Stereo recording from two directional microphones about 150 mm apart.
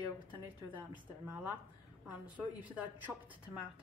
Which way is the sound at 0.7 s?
10° right (ahead or behind).